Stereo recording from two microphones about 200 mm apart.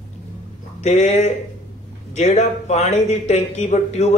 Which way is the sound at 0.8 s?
35° left (ahead or behind).